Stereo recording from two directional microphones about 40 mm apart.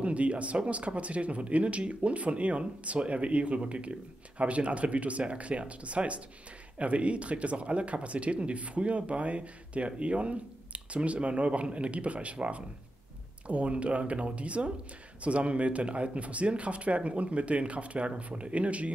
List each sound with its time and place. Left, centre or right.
0.0 s speech: right